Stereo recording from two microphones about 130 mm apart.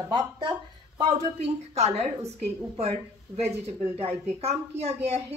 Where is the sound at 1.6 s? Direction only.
55° right (ahead or behind).